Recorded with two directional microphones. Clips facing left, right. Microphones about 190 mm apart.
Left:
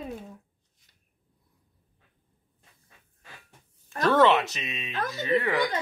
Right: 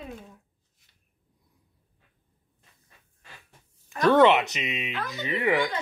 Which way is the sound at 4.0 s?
15° right (ahead or behind).